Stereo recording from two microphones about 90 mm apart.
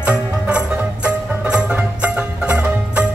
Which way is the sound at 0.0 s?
15° right (ahead or behind).